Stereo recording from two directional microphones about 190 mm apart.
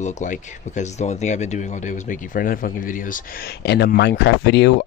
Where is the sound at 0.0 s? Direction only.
40° left (ahead or behind).